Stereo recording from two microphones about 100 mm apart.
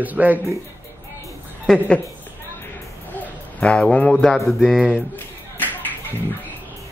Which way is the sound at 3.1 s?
15° left (ahead or behind).